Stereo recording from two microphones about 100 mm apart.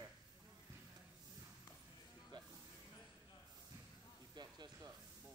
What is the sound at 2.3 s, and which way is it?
Music, 45° right (ahead or behind).